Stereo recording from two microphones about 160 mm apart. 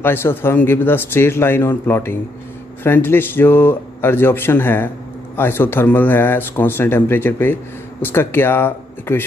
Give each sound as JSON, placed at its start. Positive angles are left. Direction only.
{"t": 0.0, "sound": "speech", "side_deg": 15}